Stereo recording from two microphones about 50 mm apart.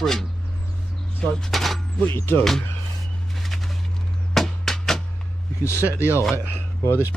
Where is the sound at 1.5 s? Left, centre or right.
Centre.